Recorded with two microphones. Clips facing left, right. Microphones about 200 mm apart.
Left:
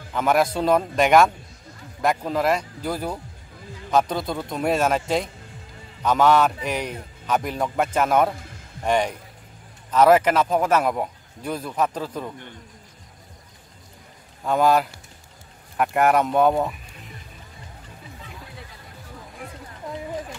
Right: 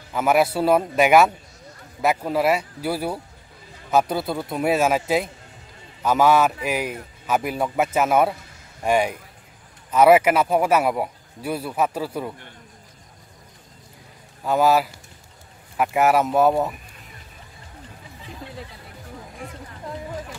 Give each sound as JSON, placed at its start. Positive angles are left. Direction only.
{"t": 0.1, "sound": "speech", "side_deg": -5}
{"t": 14.4, "sound": "speech", "side_deg": -5}